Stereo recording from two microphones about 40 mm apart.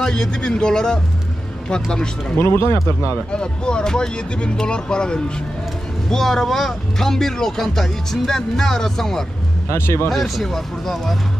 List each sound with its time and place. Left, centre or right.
0.0 s speech: centre
2.3 s speech: left
3.3 s speech: centre
6.0 s speech: centre
10.0 s speech: centre